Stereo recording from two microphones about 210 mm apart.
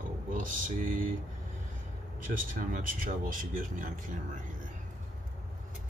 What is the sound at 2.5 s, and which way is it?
Speech, 40° right (ahead or behind).